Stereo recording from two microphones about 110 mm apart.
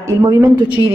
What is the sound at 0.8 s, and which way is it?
Speech, 45° right (ahead or behind).